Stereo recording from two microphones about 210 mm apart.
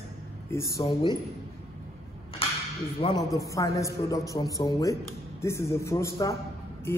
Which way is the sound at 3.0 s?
25° left (ahead or behind).